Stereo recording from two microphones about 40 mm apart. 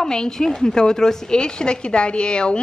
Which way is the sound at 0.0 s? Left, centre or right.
Centre.